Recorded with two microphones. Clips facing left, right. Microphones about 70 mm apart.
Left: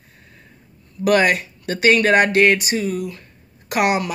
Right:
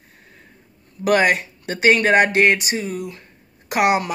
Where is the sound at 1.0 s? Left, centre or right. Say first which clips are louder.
Left 1 dB; right.